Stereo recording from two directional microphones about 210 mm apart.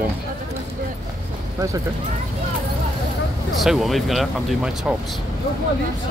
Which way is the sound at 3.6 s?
Centre (ahead or behind).